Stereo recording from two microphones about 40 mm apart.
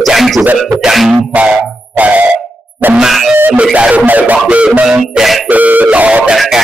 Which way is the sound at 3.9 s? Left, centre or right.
Right.